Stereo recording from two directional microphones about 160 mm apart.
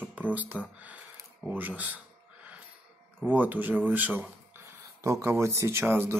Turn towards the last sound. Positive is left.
turn(degrees=-15)  # may be behind; listen again after turning